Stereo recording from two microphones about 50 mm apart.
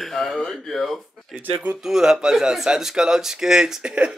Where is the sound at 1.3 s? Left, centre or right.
Centre.